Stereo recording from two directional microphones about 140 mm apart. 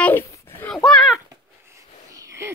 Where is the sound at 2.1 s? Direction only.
20° right (ahead or behind).